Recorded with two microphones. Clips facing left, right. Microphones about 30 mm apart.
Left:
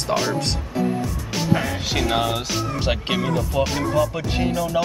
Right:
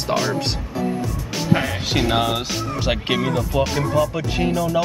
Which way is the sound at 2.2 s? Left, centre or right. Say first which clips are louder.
Right 1 dB; centre.